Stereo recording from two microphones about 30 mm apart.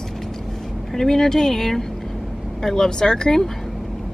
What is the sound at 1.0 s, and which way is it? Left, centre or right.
Speech, centre.